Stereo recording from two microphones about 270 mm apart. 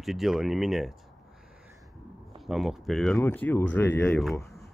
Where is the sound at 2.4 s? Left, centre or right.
Centre.